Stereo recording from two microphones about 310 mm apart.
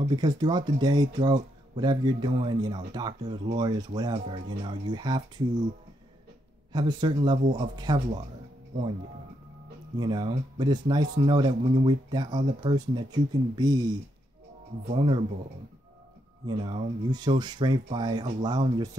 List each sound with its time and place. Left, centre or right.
0.1 s speech: centre
6.7 s speech: centre
9.9 s speech: centre
16.4 s speech: centre